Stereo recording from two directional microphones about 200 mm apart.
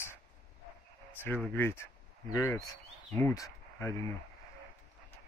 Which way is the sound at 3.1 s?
15° left (ahead or behind).